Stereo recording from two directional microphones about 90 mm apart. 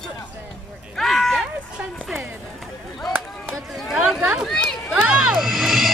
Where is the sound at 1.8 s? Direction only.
20° right (ahead or behind).